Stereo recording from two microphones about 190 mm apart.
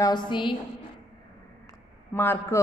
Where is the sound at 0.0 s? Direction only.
25° left (ahead or behind).